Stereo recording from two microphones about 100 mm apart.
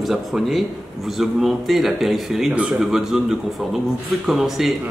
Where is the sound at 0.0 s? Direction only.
Centre (ahead or behind).